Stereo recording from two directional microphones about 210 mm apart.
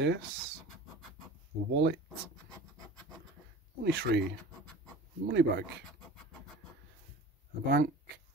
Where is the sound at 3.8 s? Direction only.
50° right (ahead or behind).